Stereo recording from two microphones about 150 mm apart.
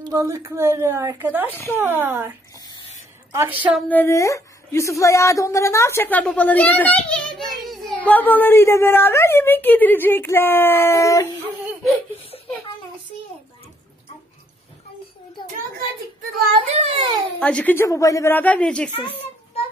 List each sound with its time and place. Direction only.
0.1 s a woman's voice: 20° right (ahead or behind)
3.9 s a woman's voice: 15° left (ahead or behind)
16.6 s a child's voice: 40° right (ahead or behind)
17.4 s a woman's voice: 5° left (ahead or behind)
17.8 s a woman's voice: 20° left (ahead or behind)
18.9 s a child's voice: 35° left (ahead or behind)